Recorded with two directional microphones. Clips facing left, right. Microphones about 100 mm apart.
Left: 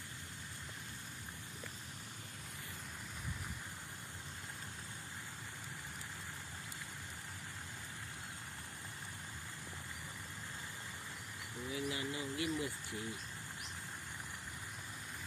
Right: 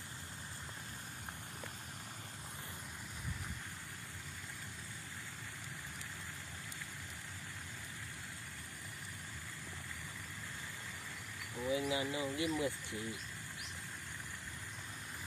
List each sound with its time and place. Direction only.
11.7 s speech: 20° right (ahead or behind)